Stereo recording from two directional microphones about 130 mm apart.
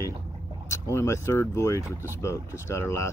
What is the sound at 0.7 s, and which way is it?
Speech, 20° left (ahead or behind).